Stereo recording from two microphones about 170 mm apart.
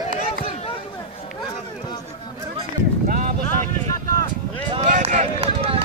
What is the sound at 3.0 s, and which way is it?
Clip-clop, 50° right (ahead or behind).